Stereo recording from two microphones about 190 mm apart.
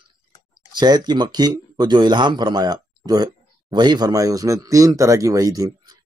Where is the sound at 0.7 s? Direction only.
20° right (ahead or behind).